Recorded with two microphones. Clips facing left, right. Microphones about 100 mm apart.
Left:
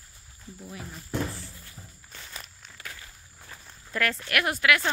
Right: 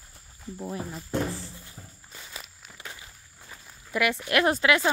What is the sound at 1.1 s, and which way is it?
Music, 20° right (ahead or behind).